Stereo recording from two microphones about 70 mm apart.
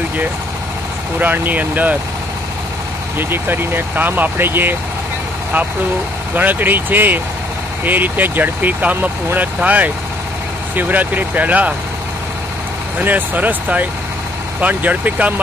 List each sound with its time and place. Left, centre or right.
1.2 s speech: right
3.2 s speech: right
6.3 s speech: right
13.0 s speech: right